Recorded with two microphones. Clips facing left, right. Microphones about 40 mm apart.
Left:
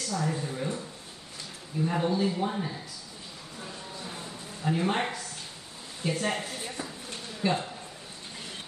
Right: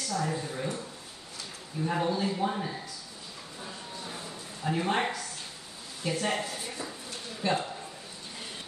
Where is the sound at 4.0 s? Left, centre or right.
Centre.